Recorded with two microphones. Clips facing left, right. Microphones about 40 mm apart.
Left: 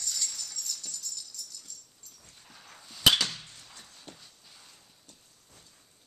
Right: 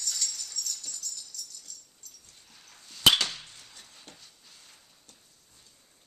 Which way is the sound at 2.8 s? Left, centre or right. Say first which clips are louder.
Right 2 dB; centre.